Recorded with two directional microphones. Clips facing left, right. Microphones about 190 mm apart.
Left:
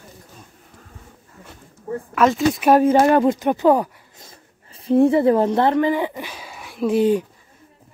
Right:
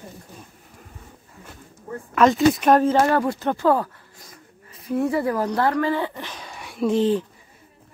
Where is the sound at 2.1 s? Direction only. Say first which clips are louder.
Right 1 dB; centre (ahead or behind); by 4.3 s 15° left (ahead or behind).